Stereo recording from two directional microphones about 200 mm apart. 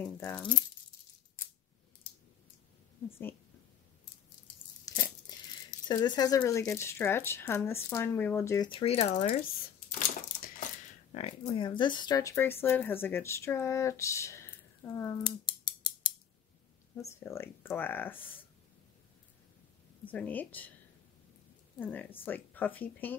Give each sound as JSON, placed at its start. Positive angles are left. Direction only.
{"t": 0.0, "sound": "speech", "side_deg": 10}
{"t": 3.1, "sound": "speech", "side_deg": 10}
{"t": 4.8, "sound": "speech", "side_deg": 15}
{"t": 8.6, "sound": "speech", "side_deg": 30}
{"t": 9.4, "sound": "a sound", "side_deg": 40}
{"t": 11.1, "sound": "speech", "side_deg": 30}
{"t": 16.9, "sound": "speech", "side_deg": 15}
{"t": 20.1, "sound": "speech", "side_deg": 10}
{"t": 21.7, "sound": "speech", "side_deg": 10}